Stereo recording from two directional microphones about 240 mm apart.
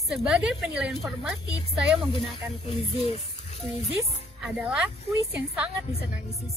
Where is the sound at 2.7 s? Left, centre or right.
Left.